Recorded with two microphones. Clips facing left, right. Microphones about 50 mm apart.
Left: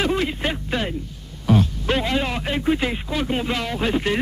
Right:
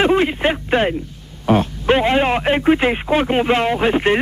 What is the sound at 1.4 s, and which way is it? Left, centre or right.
A man's voice, right.